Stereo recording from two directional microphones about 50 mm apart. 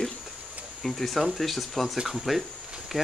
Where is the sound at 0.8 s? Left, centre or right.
Centre.